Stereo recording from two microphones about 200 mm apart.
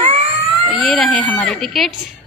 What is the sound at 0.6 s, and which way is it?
A woman's voice, centre (ahead or behind).